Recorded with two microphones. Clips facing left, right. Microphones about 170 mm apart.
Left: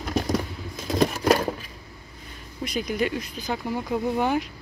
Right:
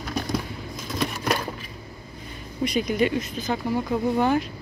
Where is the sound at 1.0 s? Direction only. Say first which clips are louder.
Left 6 dB; 30° left (ahead or behind).